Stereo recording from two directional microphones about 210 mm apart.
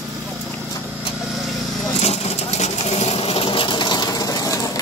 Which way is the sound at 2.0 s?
30° left (ahead or behind).